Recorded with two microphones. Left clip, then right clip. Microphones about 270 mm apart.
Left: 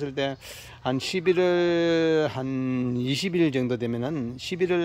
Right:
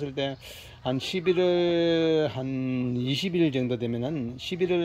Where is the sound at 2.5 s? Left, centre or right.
Left.